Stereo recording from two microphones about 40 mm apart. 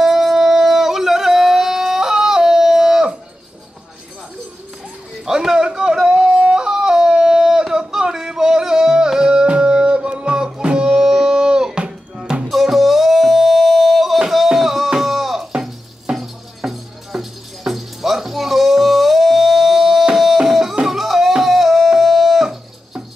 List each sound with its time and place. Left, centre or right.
0.0 s yodeling: centre
5.2 s yodeling: centre
12.4 s music: centre
21.4 s a sound: centre